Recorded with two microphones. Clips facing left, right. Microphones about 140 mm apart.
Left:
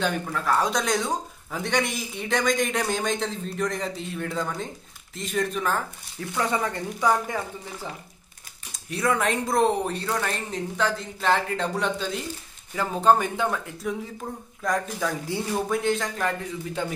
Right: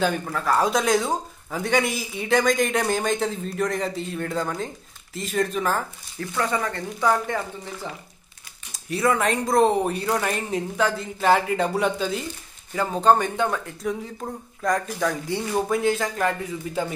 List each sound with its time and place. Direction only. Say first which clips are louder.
0.0 s speech: right 3 dB; centre (ahead or behind)
6.3 s speech: right 1 dB; 15° left (ahead or behind)
8.7 s speech: right 3 dB; centre (ahead or behind)
14.2 s speech: right 6 dB; 15° right (ahead or behind)
14.6 s speech: right 3 dB; centre (ahead or behind)